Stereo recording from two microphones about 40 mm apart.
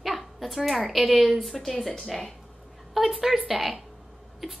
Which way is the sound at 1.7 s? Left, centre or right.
Centre.